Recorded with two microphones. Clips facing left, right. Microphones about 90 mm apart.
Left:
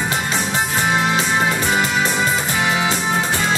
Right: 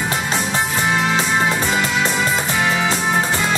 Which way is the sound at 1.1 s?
25° right (ahead or behind).